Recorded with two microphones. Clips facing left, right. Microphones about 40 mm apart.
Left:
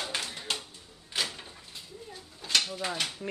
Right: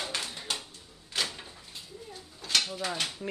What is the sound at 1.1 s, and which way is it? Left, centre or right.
Door, centre.